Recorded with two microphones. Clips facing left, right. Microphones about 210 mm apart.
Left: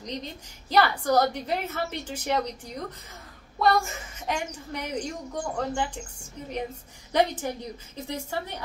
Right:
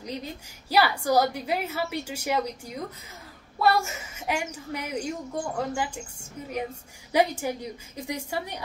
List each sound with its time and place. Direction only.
0.0 s a woman's voice: 5° right (ahead or behind)
7.1 s a woman's voice: 10° right (ahead or behind)